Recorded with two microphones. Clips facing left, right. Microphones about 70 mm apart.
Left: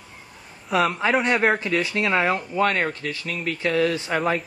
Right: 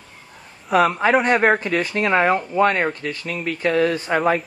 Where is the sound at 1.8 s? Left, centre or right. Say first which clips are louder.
Right 2 dB; right.